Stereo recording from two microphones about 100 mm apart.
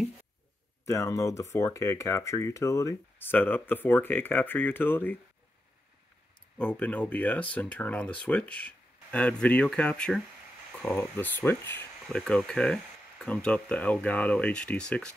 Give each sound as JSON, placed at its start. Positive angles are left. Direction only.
{"t": 0.8, "sound": "speech", "side_deg": 30}
{"t": 3.2, "sound": "speech", "side_deg": 20}
{"t": 6.6, "sound": "speech", "side_deg": 15}
{"t": 12.1, "sound": "speech", "side_deg": 5}